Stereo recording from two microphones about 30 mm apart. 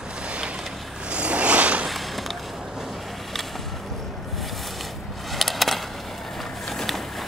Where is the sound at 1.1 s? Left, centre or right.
Right.